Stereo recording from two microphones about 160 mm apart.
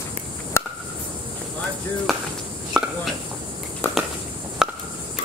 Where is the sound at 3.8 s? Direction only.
15° left (ahead or behind).